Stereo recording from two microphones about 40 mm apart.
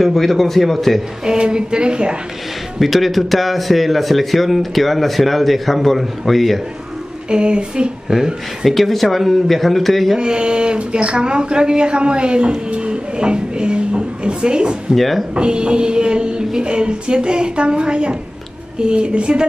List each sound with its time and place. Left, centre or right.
0.0 s a man's voice: centre
1.2 s speech: centre
2.8 s a man's voice: centre
7.2 s speech: right
8.6 s a man's voice: centre
10.1 s speech: right
15.0 s a man's voice: centre
15.3 s speech: right